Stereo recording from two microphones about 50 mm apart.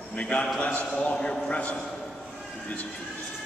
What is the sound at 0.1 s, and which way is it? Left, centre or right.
A man's voice, left.